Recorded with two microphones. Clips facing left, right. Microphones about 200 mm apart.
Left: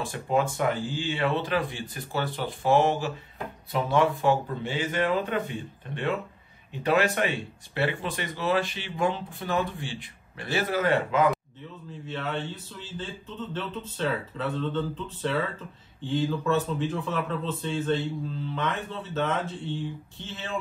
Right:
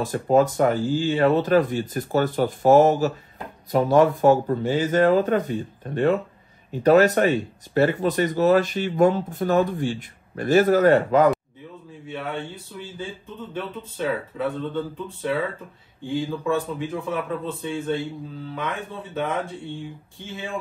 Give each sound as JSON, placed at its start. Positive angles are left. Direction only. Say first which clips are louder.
{"t": 0.0, "sound": "speech", "louder": "right 7 dB", "side_deg": -40}
{"t": 12.1, "sound": "a man's voice", "louder": "right 2 dB", "side_deg": -10}